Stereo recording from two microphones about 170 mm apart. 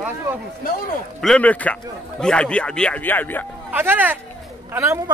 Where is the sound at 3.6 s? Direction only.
10° right (ahead or behind).